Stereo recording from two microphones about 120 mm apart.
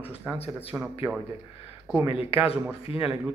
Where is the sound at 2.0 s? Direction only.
55° left (ahead or behind).